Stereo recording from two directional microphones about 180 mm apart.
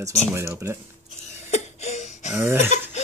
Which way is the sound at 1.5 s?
40° left (ahead or behind).